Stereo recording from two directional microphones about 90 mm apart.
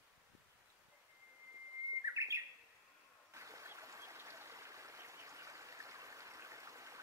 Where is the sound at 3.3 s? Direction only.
35° right (ahead or behind).